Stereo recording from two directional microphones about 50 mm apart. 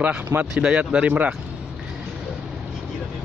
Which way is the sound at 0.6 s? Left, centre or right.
Right.